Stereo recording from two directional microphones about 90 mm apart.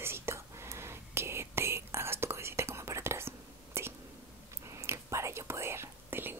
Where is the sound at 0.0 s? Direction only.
30° right (ahead or behind).